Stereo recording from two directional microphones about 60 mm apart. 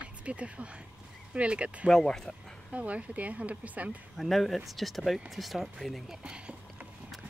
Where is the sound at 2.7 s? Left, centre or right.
Right.